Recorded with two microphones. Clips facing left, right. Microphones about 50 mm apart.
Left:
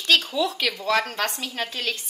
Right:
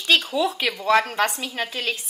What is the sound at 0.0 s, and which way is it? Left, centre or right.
A woman's voice, centre.